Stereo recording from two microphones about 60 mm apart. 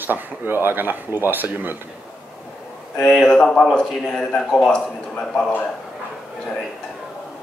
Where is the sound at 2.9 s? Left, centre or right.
Centre.